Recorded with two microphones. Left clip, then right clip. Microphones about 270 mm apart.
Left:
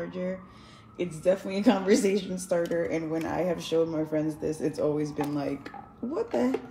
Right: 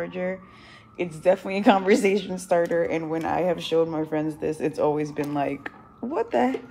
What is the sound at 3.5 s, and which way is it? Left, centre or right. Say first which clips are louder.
Speech: right 4 dB; centre.